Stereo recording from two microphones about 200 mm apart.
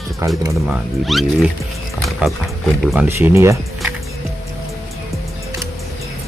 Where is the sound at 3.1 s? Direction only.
15° right (ahead or behind).